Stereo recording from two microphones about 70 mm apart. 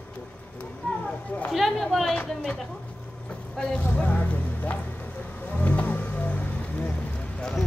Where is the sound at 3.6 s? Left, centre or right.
Centre.